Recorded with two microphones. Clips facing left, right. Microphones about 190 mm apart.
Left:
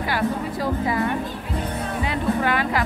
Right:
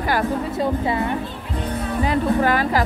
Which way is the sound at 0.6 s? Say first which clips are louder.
Right 1 dB; 25° right (ahead or behind).